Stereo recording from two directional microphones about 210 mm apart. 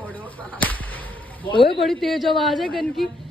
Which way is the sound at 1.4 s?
25° left (ahead or behind).